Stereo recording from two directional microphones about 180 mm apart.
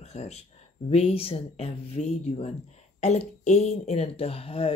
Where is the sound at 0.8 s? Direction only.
35° left (ahead or behind).